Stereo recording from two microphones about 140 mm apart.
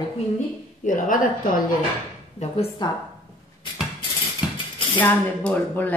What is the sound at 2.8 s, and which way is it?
Speech, 30° left (ahead or behind).